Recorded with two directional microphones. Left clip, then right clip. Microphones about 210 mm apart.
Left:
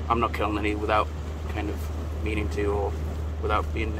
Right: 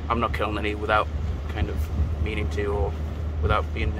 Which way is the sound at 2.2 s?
15° left (ahead or behind).